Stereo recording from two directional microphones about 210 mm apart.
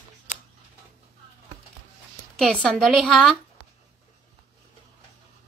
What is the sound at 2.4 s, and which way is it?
Speech, centre (ahead or behind).